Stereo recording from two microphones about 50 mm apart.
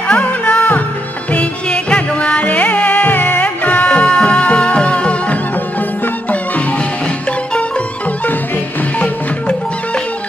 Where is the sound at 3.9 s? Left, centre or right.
Left.